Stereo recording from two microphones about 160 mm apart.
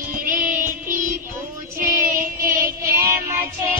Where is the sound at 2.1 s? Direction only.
60° right (ahead or behind).